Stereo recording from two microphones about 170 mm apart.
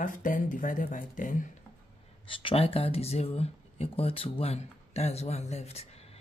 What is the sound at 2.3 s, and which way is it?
Speech, 30° left (ahead or behind).